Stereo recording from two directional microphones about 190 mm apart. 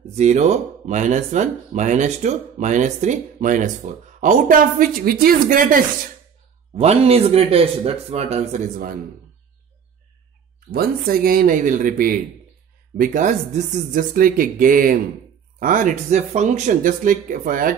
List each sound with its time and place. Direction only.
0.1 s speech: 35° right (ahead or behind)
6.7 s speech: 35° right (ahead or behind)
10.7 s speech: 50° right (ahead or behind)